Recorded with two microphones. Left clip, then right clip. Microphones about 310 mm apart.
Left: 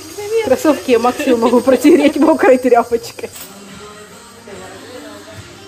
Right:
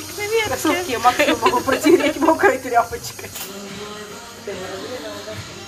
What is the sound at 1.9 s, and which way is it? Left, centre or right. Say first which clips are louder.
Speech: left 2 dB; left.